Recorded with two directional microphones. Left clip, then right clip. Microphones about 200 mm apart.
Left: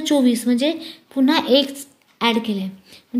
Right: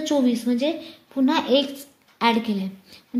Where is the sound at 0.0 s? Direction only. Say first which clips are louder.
Left 4 dB; 30° left (ahead or behind).